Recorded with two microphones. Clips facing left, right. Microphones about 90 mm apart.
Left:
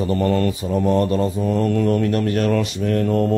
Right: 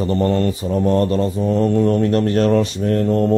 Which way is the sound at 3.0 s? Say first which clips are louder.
Right 2 dB; 25° right (ahead or behind).